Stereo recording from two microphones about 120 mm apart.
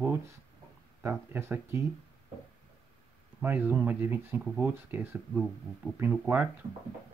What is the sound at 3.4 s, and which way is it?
Speech, 15° right (ahead or behind).